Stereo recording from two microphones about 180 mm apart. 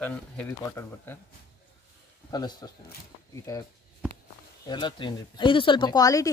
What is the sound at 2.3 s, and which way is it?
Speech, 25° left (ahead or behind).